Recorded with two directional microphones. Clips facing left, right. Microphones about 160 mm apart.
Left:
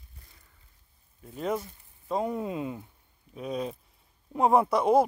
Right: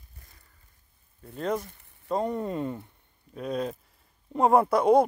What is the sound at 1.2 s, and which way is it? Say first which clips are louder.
Speech: right 1 dB; 5° left (ahead or behind).